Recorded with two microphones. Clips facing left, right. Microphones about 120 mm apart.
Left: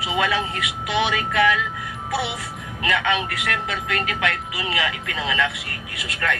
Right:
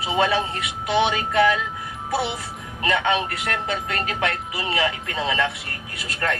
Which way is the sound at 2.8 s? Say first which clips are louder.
Right 1 dB; 30° right (ahead or behind).